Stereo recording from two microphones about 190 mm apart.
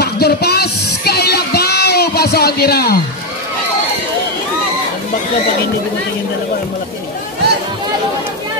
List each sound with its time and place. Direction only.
0.0 s child singing: 55° left (ahead or behind)